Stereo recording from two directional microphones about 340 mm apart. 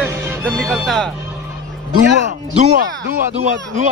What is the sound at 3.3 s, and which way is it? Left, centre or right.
Speech, right.